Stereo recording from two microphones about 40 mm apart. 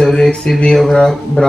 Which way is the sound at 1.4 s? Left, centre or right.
Left.